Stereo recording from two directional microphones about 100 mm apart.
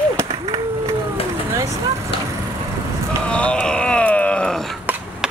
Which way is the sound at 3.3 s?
10° left (ahead or behind).